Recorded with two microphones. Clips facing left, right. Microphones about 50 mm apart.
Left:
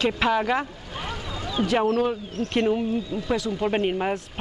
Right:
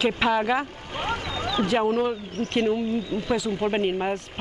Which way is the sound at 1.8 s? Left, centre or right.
Centre.